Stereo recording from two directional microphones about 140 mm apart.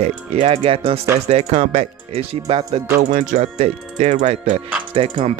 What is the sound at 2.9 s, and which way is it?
Speech, 70° right (ahead or behind).